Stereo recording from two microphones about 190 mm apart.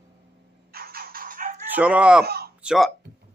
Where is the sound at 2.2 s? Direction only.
55° right (ahead or behind).